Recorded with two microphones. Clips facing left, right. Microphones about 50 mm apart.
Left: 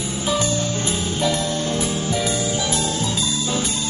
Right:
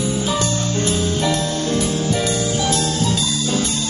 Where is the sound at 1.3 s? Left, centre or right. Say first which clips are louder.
Right 2 dB; left.